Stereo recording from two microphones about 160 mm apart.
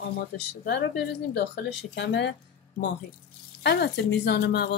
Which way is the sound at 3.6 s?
90° left.